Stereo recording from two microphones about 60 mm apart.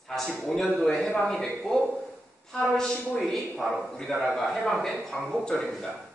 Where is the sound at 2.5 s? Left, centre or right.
Centre.